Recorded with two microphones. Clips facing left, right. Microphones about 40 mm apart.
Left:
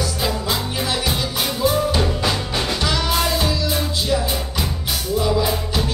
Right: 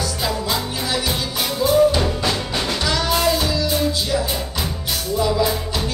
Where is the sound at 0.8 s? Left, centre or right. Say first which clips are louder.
Left 1 dB; centre.